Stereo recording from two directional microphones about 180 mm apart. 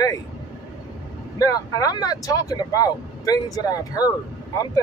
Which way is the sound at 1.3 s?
20° left (ahead or behind).